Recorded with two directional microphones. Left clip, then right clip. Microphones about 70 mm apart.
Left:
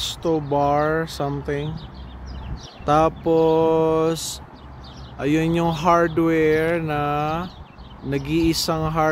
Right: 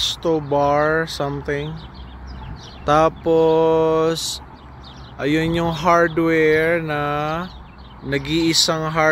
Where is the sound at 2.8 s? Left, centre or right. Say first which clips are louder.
Right 2 dB; centre.